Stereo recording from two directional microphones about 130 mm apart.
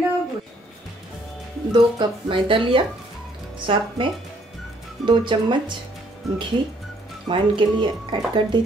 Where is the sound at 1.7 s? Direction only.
35° right (ahead or behind).